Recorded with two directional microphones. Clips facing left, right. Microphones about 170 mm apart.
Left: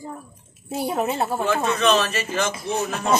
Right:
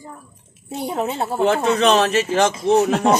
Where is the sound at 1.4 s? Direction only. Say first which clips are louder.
Right 6 dB; 70° right (ahead or behind).